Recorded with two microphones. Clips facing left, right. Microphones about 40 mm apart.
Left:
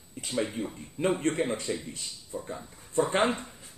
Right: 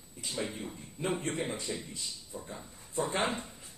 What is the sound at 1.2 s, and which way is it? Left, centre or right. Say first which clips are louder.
Speech: left 7 dB; left.